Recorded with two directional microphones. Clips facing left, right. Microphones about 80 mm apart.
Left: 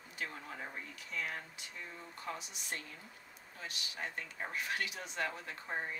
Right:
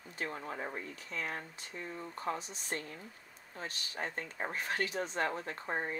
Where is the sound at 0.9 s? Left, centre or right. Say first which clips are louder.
Right 2 dB; right.